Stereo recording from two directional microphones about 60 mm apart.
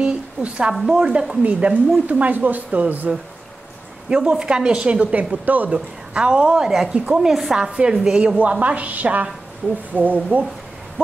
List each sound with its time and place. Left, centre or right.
0.0 s a woman's voice: right
4.1 s a woman's voice: centre
8.4 s speech: right